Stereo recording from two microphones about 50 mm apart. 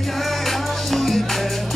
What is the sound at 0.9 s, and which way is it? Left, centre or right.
Music, centre.